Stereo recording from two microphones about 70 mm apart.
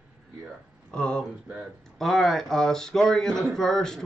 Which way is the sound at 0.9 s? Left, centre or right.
Centre.